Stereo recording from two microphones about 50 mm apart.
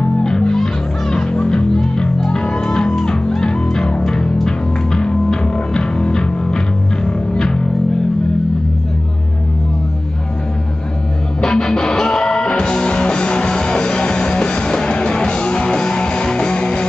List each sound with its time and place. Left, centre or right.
0.2 s music: centre
11.4 s music: centre